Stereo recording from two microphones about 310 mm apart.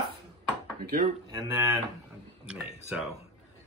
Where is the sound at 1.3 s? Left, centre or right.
Centre.